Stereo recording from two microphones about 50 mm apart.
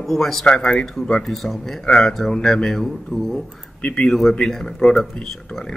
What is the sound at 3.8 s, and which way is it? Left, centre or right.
Speech, left.